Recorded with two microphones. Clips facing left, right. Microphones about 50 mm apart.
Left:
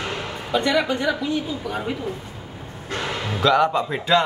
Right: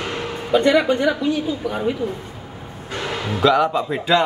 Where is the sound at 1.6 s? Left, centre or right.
Centre.